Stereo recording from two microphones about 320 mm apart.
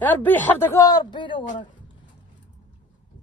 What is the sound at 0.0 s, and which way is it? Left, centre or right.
Speech, centre.